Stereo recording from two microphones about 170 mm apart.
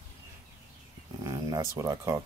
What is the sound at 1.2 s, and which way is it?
Speech, 20° right (ahead or behind).